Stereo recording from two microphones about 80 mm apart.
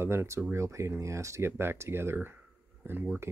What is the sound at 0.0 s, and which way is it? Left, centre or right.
Speech, right.